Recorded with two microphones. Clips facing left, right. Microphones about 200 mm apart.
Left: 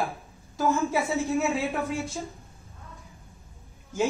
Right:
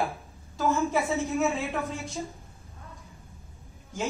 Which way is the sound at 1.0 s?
Centre (ahead or behind).